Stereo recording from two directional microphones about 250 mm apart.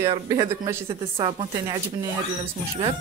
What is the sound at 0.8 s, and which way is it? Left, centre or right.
Speech, right.